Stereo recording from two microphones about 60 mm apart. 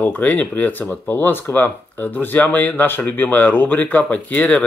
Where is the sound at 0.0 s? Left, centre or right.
Left.